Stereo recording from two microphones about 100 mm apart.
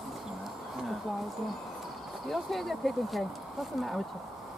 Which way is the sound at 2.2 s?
Centre (ahead or behind).